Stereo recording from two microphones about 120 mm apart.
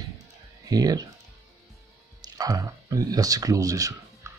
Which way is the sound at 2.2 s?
30° right (ahead or behind).